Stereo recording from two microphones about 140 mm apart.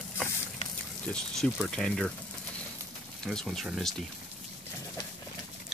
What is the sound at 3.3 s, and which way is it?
Speech, centre (ahead or behind).